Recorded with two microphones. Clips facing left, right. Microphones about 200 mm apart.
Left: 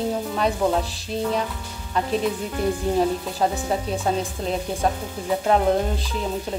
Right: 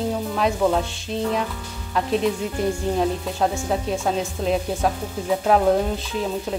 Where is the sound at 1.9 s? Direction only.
Centre (ahead or behind).